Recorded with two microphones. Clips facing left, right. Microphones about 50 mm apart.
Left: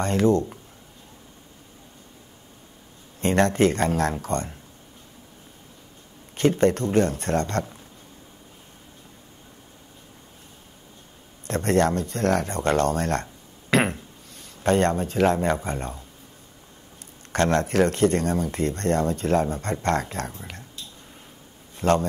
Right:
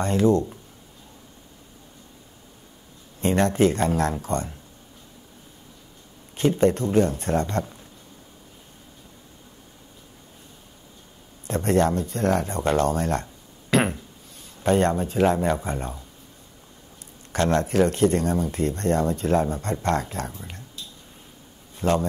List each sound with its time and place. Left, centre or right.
0.0 s speech: left
3.2 s speech: left
6.3 s speech: left
11.4 s speech: left
15.4 s speech: left
17.3 s speech: left
21.7 s a man's voice: left